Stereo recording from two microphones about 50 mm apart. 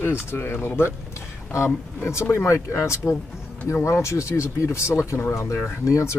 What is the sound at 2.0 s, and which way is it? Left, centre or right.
Speech, left.